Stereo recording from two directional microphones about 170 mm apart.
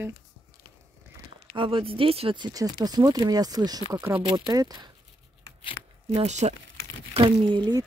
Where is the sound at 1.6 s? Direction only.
30° right (ahead or behind).